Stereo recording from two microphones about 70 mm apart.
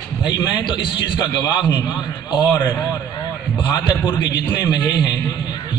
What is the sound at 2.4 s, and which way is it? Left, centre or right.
Speech, centre.